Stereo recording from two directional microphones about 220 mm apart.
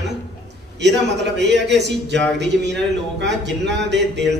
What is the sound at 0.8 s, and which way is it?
A man's voice, 50° right (ahead or behind).